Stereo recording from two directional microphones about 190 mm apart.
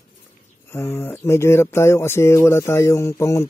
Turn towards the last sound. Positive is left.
turn(degrees=15)  # may be behind; listen again after turning